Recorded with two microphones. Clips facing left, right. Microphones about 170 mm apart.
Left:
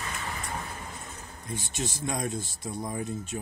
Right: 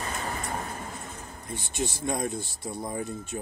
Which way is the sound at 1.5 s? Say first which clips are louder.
Right 2 dB; 55° right (ahead or behind).